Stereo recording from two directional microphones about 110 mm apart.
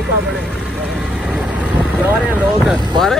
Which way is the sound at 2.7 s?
5° left (ahead or behind).